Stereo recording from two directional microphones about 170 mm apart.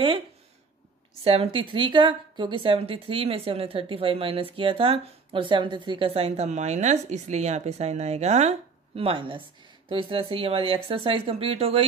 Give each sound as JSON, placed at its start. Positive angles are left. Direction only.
{"t": 1.2, "sound": "a woman's voice", "side_deg": -35}